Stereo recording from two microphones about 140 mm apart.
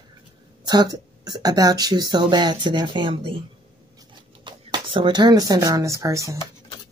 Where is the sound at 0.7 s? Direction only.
30° right (ahead or behind).